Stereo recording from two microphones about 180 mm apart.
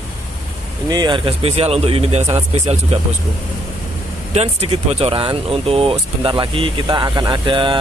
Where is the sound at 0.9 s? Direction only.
25° right (ahead or behind).